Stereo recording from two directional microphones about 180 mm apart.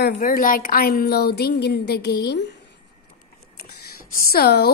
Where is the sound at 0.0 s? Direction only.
55° left (ahead or behind).